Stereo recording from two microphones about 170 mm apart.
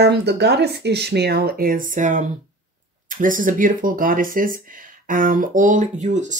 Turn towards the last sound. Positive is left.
turn(degrees=-45)  # may be behind; listen again after turning